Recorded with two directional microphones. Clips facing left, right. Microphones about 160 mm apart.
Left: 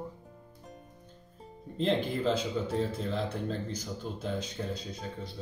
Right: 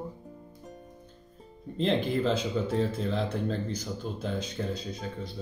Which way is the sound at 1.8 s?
80° right.